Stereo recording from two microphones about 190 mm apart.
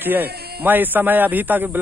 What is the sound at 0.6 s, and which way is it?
Speech, 10° right (ahead or behind).